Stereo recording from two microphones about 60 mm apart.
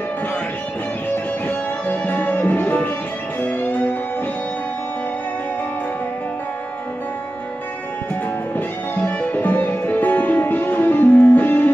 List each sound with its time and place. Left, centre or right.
1.5 s music: left
8.5 s music: left